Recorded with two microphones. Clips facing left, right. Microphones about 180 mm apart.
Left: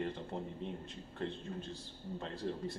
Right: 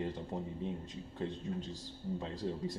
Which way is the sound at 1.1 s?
15° right (ahead or behind).